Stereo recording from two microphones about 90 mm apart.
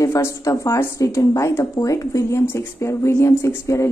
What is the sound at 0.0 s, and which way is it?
A woman's voice, 35° left (ahead or behind).